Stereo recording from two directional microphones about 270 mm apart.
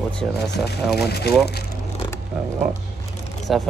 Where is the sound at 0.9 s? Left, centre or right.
Left.